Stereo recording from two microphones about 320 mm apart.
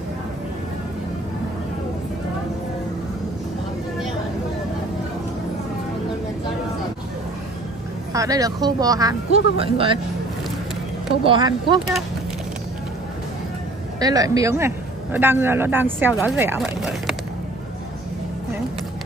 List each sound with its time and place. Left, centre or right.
8.1 s speech: centre
11.2 s speech: centre
13.9 s speech: centre